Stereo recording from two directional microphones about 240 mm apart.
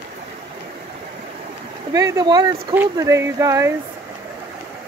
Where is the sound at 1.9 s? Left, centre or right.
Centre.